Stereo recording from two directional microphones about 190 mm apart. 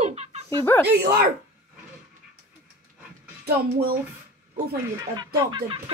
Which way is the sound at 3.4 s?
55° right (ahead or behind).